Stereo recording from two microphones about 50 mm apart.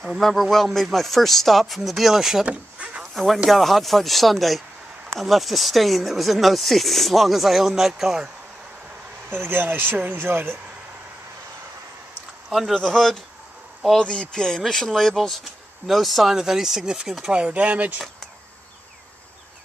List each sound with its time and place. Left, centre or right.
0.2 s speech: centre
2.4 s a sound: right
3.0 s a sound: centre
3.4 s speech: centre
9.3 s speech: right
12.4 s speech: centre
12.7 s speech: centre
13.9 s speech: centre; by 18.0 s right